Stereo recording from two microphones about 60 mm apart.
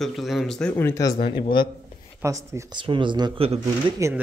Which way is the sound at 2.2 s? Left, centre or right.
Right.